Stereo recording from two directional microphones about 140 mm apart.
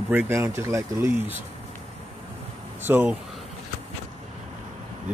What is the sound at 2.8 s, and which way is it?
Speech, 15° right (ahead or behind).